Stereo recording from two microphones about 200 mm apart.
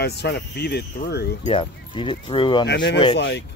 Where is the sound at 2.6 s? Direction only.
60° left (ahead or behind).